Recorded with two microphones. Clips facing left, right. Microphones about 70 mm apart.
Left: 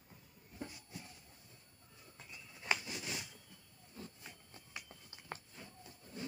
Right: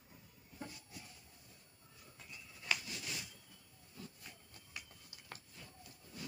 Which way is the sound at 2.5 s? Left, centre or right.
Left.